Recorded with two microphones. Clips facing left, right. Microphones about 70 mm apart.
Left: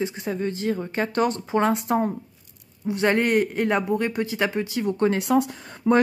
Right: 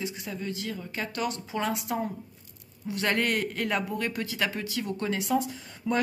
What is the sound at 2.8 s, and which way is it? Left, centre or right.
Speech, left.